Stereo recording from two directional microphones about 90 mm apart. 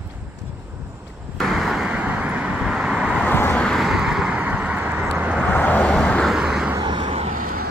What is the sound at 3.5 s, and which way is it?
Vehicle, 5° left (ahead or behind).